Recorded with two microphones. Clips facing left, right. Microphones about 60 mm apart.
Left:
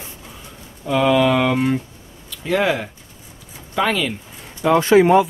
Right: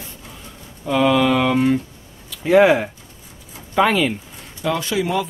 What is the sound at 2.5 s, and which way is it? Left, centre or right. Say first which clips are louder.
Speech: right 6 dB; centre.